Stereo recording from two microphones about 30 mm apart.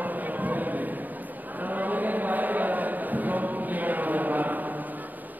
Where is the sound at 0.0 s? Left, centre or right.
Right.